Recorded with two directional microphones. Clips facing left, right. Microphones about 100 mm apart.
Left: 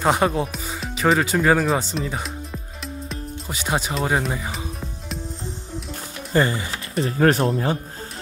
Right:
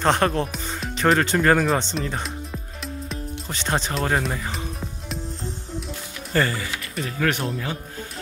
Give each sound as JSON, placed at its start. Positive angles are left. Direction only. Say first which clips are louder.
{"t": 0.0, "sound": "speech", "louder": "left 1 dB", "side_deg": 5}
{"t": 6.3, "sound": "speech", "louder": "left 3 dB", "side_deg": 20}